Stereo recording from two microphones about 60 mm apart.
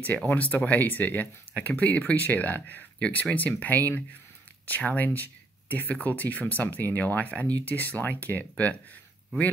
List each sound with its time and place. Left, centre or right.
0.3 s speech: left